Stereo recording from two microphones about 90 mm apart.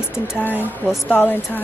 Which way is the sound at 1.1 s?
20° left (ahead or behind).